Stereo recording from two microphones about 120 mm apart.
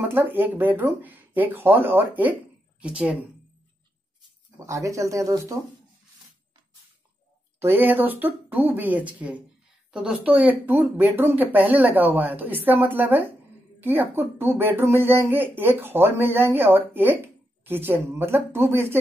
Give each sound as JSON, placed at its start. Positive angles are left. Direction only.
{"t": 0.1, "sound": "speech", "side_deg": -15}
{"t": 4.6, "sound": "speech", "side_deg": -25}
{"t": 7.5, "sound": "a woman's voice", "side_deg": -20}